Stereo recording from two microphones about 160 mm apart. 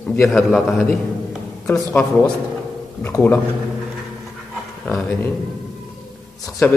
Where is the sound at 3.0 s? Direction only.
15° left (ahead or behind).